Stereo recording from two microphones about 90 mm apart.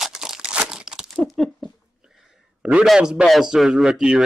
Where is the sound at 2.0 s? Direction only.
10° right (ahead or behind).